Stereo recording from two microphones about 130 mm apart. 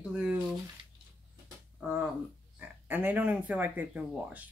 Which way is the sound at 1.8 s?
10° right (ahead or behind).